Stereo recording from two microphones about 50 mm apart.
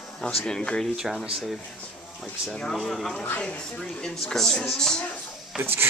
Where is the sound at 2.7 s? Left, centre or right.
Centre.